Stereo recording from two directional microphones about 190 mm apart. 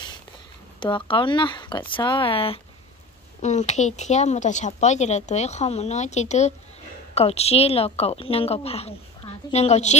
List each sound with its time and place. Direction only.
0.7 s speech: 25° left (ahead or behind)